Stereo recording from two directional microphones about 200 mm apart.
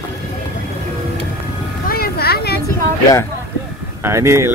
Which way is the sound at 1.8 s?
50° left (ahead or behind).